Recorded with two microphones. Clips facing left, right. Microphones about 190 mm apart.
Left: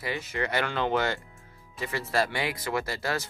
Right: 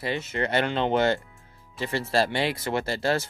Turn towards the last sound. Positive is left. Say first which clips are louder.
# right 4 dB
turn(degrees=-25)  # may be behind; listen again after turning